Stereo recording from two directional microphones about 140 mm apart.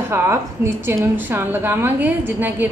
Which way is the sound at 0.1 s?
20° right (ahead or behind).